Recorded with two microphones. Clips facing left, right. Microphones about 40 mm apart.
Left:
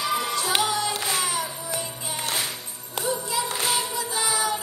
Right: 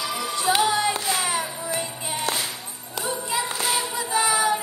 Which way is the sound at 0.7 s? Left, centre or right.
Right.